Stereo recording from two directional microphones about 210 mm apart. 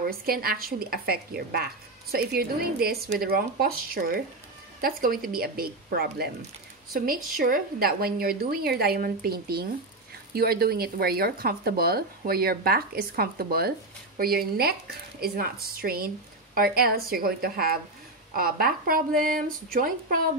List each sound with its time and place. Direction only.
0.0 s speech: 45° right (ahead or behind)